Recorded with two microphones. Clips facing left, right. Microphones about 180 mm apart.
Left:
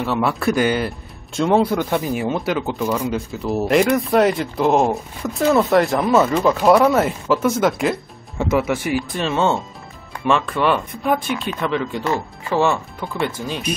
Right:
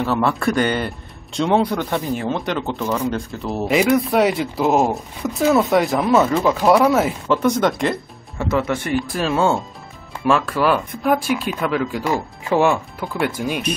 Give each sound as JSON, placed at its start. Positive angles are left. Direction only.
{"t": 0.0, "sound": "speech", "side_deg": 0}
{"t": 8.4, "sound": "speech", "side_deg": 15}
{"t": 9.1, "sound": "speech", "side_deg": -5}
{"t": 11.2, "sound": "chopping", "side_deg": -5}
{"t": 13.0, "sound": "speech", "side_deg": 0}
{"t": 13.3, "sound": "chopping", "side_deg": -10}